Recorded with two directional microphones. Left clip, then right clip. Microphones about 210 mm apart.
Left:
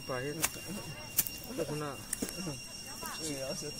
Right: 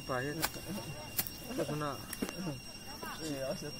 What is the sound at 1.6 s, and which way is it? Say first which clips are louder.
Speech: right 1 dB; 35° left (ahead or behind).